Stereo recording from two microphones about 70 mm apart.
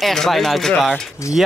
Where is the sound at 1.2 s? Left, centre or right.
Left.